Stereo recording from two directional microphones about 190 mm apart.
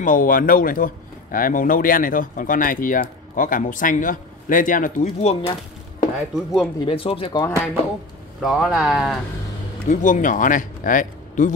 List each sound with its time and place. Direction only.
0.0 s speech: 45° left (ahead or behind)
5.3 s speech: 30° left (ahead or behind)
6.1 s speech: centre (ahead or behind)
6.8 s speech: 30° left (ahead or behind)
8.4 s speech: centre (ahead or behind)
9.8 s speech: 40° left (ahead or behind)